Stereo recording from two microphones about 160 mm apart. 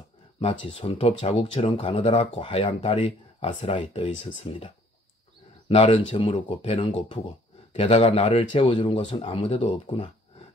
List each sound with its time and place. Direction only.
0.4 s speech: 35° left (ahead or behind)